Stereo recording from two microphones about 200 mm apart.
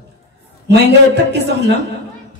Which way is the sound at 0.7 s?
55° right (ahead or behind).